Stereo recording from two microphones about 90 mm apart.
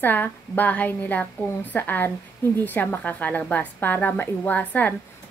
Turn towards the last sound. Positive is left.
turn(degrees=15)  # may be behind; listen again after turning